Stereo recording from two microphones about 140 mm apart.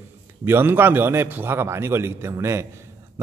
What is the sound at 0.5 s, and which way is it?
A man's voice, 15° right (ahead or behind).